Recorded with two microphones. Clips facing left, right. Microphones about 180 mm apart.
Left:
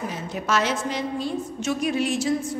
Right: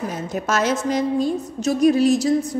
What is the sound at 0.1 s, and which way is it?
A woman's voice, 45° right (ahead or behind).